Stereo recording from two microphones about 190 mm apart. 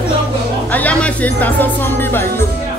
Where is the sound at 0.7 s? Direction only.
10° left (ahead or behind).